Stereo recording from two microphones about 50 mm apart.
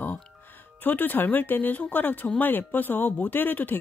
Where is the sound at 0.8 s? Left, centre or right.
Left.